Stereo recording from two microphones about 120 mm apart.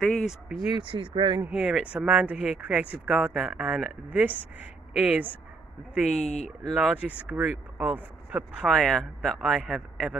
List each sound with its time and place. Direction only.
0.0 s speech: centre (ahead or behind)
0.7 s speech: 45° right (ahead or behind)
1.4 s speech: 10° right (ahead or behind)
6.2 s speech: 70° left (ahead or behind)
6.6 s speech: 5° right (ahead or behind)
8.6 s speech: centre (ahead or behind)